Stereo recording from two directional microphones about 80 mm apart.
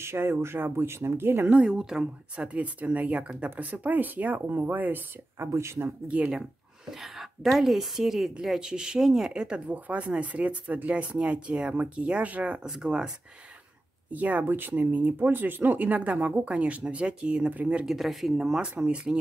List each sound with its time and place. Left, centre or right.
0.0 s speech: right
1.5 s speech: centre
5.5 s speech: right
6.0 s a woman's voice: centre
6.9 s a woman's voice: centre
14.1 s speech: centre
17.8 s speech: centre